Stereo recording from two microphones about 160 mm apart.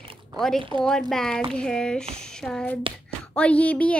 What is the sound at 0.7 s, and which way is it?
Child singing, 5° left (ahead or behind).